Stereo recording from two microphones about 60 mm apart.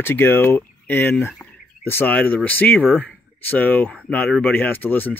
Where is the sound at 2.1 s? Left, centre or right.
Left.